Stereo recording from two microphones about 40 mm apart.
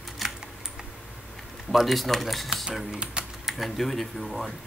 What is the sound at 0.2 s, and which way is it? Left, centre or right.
Typing, centre.